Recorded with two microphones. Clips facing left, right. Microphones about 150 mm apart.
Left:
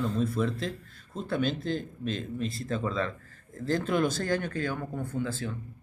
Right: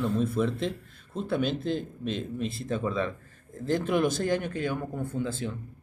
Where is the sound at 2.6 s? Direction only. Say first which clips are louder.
Right 2 dB; 15° right (ahead or behind).